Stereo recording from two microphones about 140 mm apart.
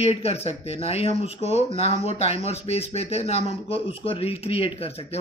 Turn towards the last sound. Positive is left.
turn(degrees=45)  # may be behind; listen again after turning